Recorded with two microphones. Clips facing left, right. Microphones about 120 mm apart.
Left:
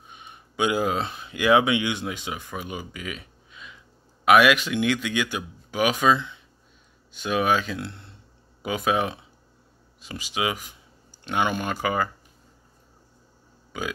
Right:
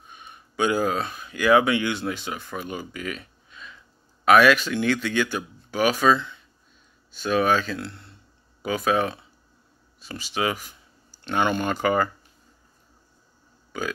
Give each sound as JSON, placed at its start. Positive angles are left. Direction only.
{"t": 0.1, "sound": "speech", "side_deg": 15}